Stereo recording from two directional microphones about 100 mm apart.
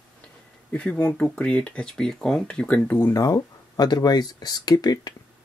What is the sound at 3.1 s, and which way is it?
Speech, 35° left (ahead or behind).